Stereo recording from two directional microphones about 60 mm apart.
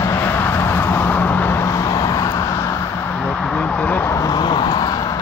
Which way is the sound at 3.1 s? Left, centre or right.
Centre.